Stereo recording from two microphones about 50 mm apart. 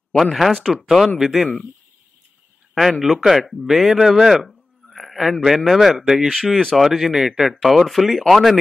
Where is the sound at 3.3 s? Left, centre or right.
Centre.